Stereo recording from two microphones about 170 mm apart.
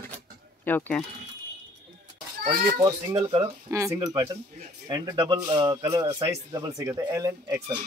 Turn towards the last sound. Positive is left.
turn(degrees=-20)  # may be behind; listen again after turning